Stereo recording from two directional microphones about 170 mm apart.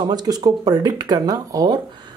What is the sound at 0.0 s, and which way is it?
Speech, 25° right (ahead or behind).